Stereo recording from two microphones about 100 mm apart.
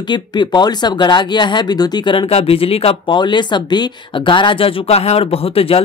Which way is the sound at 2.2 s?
75° left (ahead or behind).